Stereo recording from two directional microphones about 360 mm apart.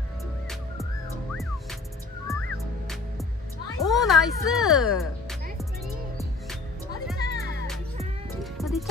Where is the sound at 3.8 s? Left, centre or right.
Centre.